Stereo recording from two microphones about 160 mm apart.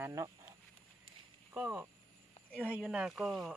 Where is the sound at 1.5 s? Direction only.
10° right (ahead or behind).